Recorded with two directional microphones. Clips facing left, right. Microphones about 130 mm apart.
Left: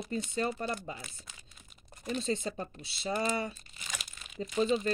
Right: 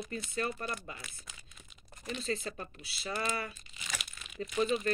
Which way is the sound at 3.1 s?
30° left (ahead or behind).